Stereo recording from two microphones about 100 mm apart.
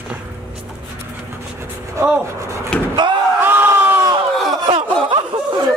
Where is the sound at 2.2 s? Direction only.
30° right (ahead or behind).